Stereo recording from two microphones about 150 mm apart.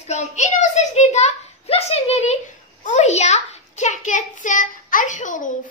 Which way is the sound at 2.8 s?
50° left (ahead or behind).